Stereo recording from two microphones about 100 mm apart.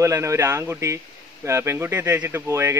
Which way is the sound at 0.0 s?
30° right (ahead or behind).